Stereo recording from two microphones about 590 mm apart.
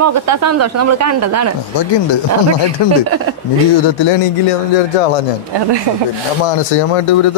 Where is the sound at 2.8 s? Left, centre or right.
Left.